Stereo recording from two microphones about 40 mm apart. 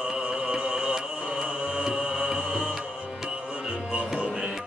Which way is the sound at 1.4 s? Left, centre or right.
Right.